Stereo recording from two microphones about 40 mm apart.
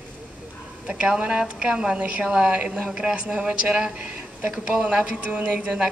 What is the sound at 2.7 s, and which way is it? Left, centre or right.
Speech, centre.